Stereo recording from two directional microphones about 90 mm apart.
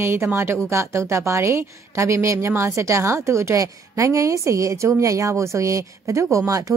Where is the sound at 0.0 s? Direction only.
30° right (ahead or behind).